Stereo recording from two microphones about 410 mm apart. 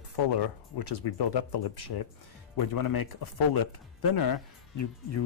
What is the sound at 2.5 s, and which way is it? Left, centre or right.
Speech, left.